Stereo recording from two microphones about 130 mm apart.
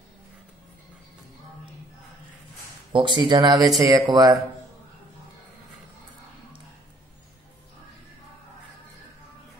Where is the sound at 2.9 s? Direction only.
40° right (ahead or behind).